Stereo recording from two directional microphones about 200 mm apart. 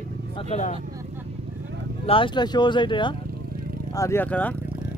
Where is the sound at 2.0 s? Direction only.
25° left (ahead or behind).